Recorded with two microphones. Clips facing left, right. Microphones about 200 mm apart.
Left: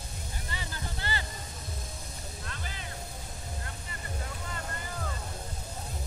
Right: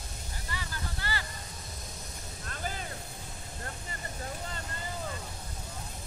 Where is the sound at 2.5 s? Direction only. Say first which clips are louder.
Right 8 dB; 45° right (ahead or behind).